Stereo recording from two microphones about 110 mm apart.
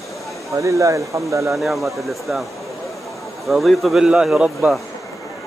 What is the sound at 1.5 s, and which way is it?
Speech, centre (ahead or behind).